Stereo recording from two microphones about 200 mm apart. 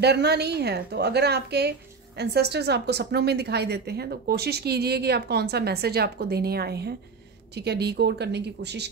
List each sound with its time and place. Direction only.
0.0 s a woman's voice: 55° right (ahead or behind)